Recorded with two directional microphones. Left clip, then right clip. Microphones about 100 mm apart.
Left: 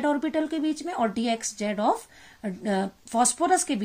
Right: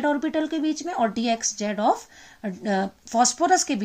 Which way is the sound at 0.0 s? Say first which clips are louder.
Right 2 dB; 20° right (ahead or behind).